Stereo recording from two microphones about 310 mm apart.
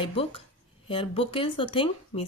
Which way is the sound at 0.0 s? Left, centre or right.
Centre.